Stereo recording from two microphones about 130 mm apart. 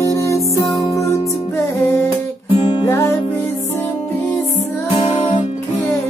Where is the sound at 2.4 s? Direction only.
35° left (ahead or behind).